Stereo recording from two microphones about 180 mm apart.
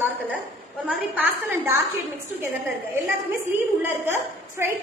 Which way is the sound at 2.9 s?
10° right (ahead or behind).